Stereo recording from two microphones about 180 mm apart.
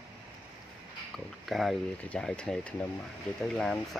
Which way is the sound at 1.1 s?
Centre (ahead or behind).